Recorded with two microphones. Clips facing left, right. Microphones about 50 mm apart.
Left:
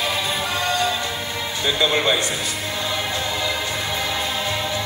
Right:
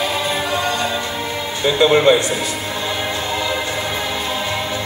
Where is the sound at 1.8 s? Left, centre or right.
Right.